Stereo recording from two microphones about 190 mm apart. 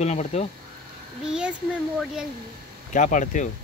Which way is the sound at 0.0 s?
35° left (ahead or behind).